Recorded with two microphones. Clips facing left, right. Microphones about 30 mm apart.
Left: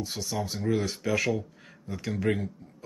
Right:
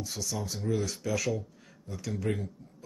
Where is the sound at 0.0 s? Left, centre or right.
Left.